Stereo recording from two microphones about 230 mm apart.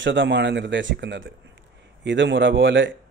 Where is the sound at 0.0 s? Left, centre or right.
Right.